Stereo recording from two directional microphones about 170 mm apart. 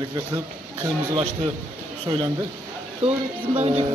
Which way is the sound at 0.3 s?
20° right (ahead or behind).